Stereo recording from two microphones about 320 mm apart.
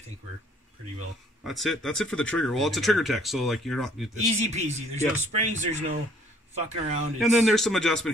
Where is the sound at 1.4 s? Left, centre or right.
Centre.